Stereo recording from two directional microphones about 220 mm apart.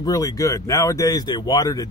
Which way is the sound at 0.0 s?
15° left (ahead or behind).